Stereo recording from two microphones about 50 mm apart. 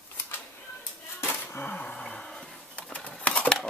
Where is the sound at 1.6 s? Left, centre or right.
Left.